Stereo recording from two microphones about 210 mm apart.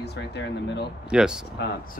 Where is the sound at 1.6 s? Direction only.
55° left (ahead or behind).